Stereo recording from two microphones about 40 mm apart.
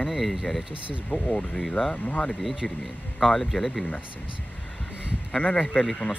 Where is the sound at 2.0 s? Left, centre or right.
Left.